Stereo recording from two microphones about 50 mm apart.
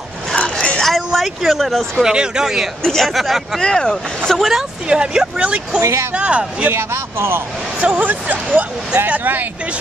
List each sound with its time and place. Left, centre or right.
0.4 s a sound: left
0.7 s a sound: centre
2.0 s speech: centre
2.8 s speech: centre
3.1 s speech: centre
3.6 s speech: centre
4.4 s speech: centre
4.8 s speech: centre
5.8 s speech: right
6.1 s speech: right
6.7 s speech: right
7.8 s speech: right